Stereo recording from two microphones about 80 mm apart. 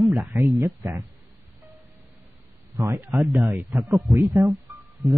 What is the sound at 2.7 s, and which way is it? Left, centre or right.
Speech, right.